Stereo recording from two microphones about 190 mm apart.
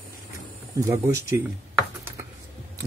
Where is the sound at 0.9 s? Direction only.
10° right (ahead or behind).